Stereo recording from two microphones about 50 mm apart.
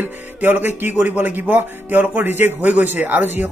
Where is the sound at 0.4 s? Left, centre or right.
Right.